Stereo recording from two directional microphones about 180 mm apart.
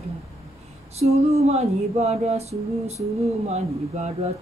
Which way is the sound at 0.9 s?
35° right (ahead or behind).